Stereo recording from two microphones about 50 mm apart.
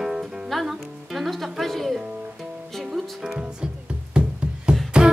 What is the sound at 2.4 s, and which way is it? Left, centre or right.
Music, centre.